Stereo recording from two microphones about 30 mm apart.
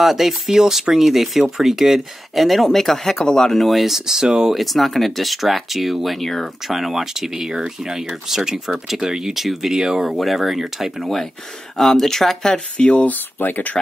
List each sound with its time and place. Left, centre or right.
0.0 s speech: centre
3.6 s speech: centre
3.9 s speech: centre
4.6 s speech: centre
6.0 s speech: centre
6.7 s speech: centre
9.3 s speech: centre
9.7 s speech: centre
10.0 s speech: centre
11.7 s speech: centre
12.5 s speech: left
13.0 s speech: left